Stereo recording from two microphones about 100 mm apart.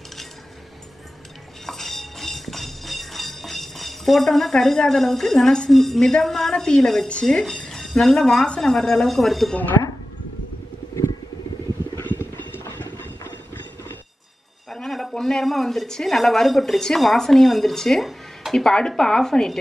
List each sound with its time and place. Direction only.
1.7 s a sound: centre (ahead or behind)
12.0 s clip-clop: 20° left (ahead or behind)
14.7 s speech: centre (ahead or behind)